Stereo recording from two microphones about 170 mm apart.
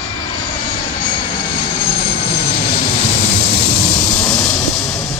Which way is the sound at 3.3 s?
35° left (ahead or behind).